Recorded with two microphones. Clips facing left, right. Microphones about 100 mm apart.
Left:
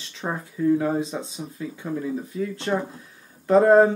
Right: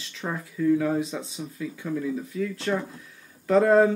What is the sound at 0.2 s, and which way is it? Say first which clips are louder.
Speech: left 2 dB; 30° left (ahead or behind).